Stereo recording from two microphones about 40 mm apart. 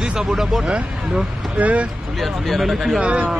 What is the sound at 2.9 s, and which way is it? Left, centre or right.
Speech, right.